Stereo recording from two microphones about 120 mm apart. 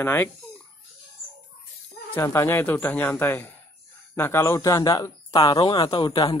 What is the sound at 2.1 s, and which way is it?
Speech, 20° left (ahead or behind).